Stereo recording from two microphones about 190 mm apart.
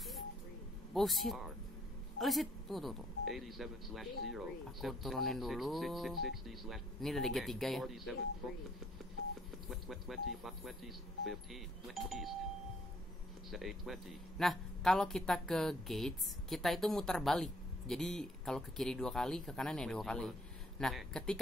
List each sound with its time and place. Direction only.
0.9 s speech: centre (ahead or behind)
9.7 s speech: centre (ahead or behind)
13.5 s speech: centre (ahead or behind)